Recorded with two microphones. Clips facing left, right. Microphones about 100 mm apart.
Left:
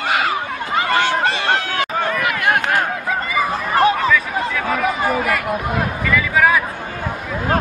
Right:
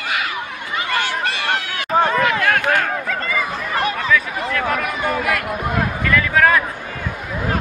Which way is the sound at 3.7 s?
35° left (ahead or behind).